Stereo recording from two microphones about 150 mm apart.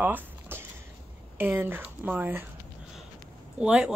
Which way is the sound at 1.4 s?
15° right (ahead or behind).